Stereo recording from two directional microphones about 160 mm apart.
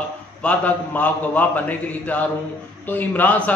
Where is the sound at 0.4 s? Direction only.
10° left (ahead or behind).